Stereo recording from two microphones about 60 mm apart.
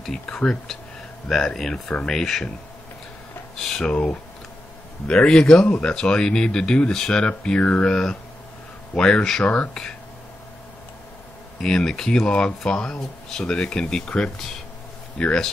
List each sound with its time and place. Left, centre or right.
0.0 s speech: centre
3.5 s speech: centre
11.6 s speech: centre